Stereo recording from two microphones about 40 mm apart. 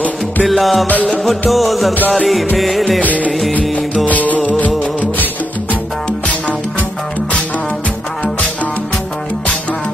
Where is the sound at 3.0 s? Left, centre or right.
Left.